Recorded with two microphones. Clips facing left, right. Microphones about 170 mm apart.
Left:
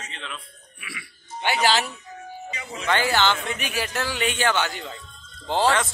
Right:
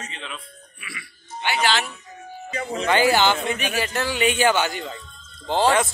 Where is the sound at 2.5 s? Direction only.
50° right (ahead or behind).